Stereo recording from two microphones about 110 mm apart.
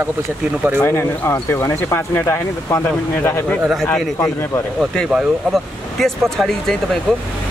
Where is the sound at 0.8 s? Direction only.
25° left (ahead or behind).